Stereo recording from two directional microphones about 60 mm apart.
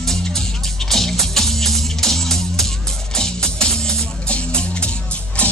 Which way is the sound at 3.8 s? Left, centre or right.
Centre.